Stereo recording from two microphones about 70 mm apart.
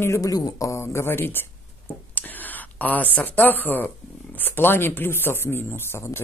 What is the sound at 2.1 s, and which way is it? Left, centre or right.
Whispering, left.